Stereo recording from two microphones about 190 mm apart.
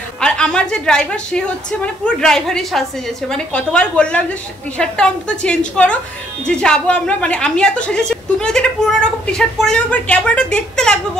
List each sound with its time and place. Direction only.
0.2 s a woman's voice: 5° left (ahead or behind)